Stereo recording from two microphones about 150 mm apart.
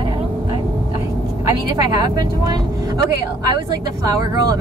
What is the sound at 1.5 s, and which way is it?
Speech, 25° right (ahead or behind).